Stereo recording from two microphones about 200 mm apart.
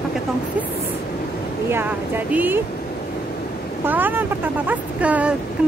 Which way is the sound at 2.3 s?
10° right (ahead or behind).